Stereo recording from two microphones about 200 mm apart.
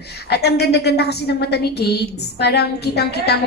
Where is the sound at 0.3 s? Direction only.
55° left (ahead or behind).